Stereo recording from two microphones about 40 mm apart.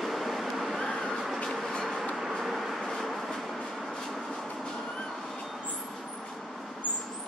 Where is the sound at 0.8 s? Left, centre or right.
Centre.